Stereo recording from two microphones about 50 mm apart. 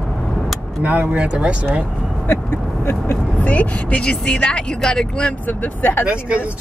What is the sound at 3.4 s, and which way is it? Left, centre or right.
Speech, left.